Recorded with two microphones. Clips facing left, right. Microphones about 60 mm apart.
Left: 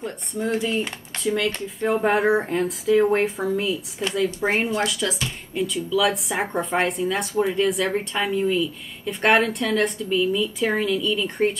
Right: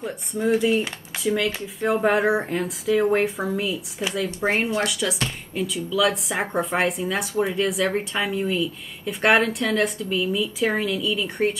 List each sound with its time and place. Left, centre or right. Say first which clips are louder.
0.0 s a woman's voice: right 2 dB; centre